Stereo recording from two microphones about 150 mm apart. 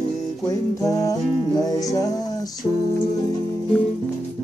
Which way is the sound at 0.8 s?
25° left (ahead or behind).